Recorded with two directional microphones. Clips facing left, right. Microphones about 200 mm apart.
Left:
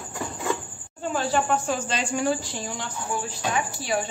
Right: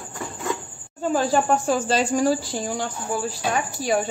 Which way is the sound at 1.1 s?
40° right (ahead or behind).